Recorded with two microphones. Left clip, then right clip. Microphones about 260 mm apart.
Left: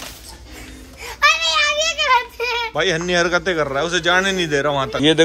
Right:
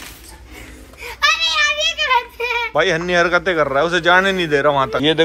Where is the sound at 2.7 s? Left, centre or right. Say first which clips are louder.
Right 3 dB; centre.